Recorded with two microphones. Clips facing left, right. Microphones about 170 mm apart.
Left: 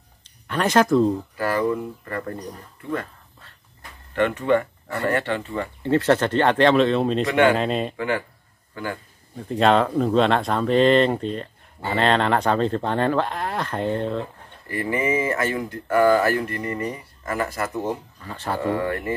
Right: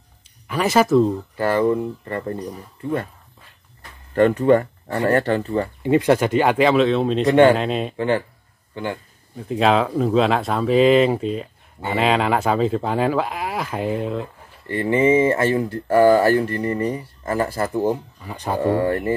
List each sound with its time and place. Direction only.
0.5 s speech: 5° right (ahead or behind)
1.3 s speech: 25° right (ahead or behind)
4.1 s speech: 40° right (ahead or behind)
5.8 s speech: 15° right (ahead or behind)
8.8 s speech: 20° right (ahead or behind)
9.4 s speech: centre (ahead or behind)
14.7 s speech: 25° right (ahead or behind)
18.2 s speech: 15° right (ahead or behind)
18.6 s speech: 30° right (ahead or behind)